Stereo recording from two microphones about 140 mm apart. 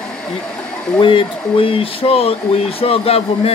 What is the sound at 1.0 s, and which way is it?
Speech, 40° left (ahead or behind).